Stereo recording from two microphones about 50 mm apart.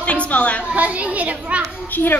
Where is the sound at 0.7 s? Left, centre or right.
Right.